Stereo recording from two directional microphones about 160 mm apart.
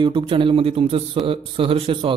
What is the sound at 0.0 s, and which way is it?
A man's voice, 30° right (ahead or behind).